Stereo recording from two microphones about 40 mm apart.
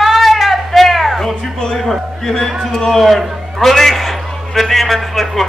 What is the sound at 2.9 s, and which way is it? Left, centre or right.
A man's voice, centre.